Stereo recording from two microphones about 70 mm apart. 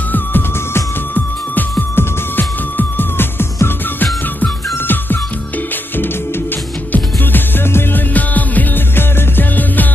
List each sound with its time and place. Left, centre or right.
0.1 s music: left
6.9 s music: left